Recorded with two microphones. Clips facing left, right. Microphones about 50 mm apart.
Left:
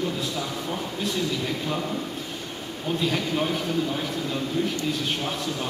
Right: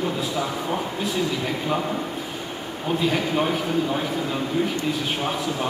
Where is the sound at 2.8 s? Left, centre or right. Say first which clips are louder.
Right 3 dB; centre.